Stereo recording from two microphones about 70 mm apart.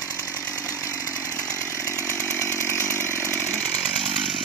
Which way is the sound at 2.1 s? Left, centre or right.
Left.